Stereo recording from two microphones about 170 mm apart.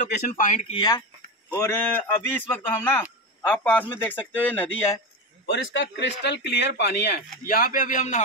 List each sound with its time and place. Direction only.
0.0 s speech: 50° left (ahead or behind)
0.7 s speech: 25° left (ahead or behind); by 4.9 s 10° left (ahead or behind)
5.5 s speech: 90° left; by 7.2 s 70° left (ahead or behind)
7.4 s speech: 55° left (ahead or behind)